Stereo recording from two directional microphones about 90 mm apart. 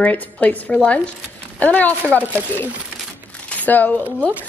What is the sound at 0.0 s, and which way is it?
A woman's voice, 15° left (ahead or behind).